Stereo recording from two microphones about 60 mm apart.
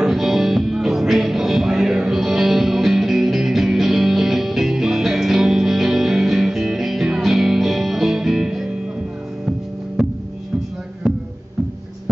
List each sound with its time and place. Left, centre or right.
0.0 s music: centre